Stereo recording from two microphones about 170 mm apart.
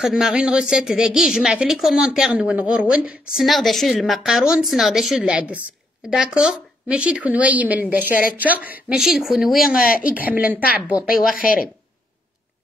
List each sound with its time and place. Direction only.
0.0 s a woman's voice: 5° right (ahead or behind)
11.3 s a woman's voice: 55° left (ahead or behind)